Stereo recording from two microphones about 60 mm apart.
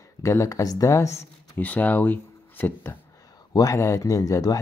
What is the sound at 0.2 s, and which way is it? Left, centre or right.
Speech, left.